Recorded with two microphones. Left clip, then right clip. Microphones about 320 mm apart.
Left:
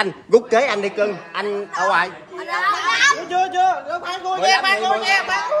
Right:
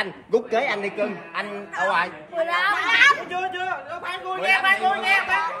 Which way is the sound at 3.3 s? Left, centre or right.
Left.